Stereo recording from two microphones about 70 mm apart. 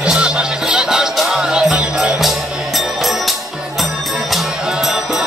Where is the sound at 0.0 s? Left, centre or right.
Centre.